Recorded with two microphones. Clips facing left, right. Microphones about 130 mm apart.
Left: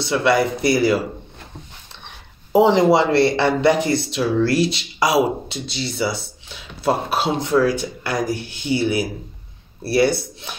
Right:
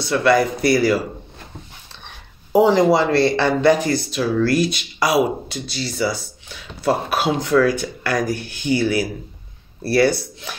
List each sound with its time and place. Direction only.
0.0 s speech: 20° left (ahead or behind)
2.5 s speech: 20° left (ahead or behind)